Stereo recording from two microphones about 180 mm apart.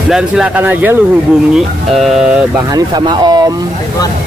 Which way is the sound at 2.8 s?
25° right (ahead or behind).